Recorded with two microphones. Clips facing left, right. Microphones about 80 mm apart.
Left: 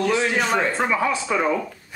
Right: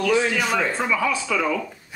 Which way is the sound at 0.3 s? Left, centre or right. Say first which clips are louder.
Left 1 dB; left.